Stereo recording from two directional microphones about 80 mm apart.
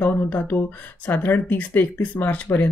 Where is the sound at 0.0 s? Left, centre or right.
Left.